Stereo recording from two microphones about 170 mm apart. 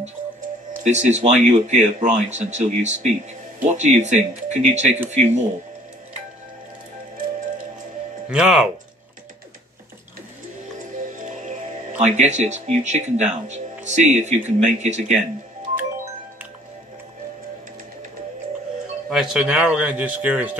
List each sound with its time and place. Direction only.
0.8 s speech: 45° right (ahead or behind)
8.3 s speech: 5° right (ahead or behind)
11.1 s music: 45° right (ahead or behind)
12.0 s speech: 40° right (ahead or behind)
19.0 s speech: 5° right (ahead or behind)